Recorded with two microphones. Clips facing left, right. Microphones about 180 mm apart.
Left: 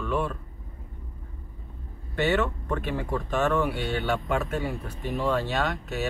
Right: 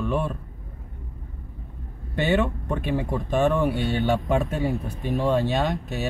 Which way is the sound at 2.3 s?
20° right (ahead or behind).